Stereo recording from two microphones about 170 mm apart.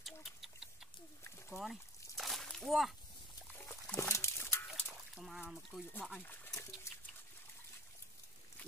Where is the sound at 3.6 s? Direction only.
15° left (ahead or behind).